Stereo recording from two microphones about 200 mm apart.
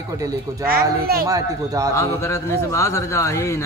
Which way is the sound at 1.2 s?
15° right (ahead or behind).